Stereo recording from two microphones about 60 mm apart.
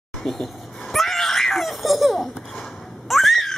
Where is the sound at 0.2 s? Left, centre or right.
Centre.